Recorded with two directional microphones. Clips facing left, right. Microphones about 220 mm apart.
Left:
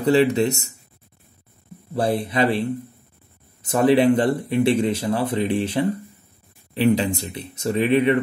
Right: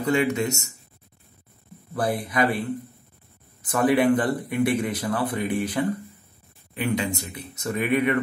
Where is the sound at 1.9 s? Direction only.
30° left (ahead or behind).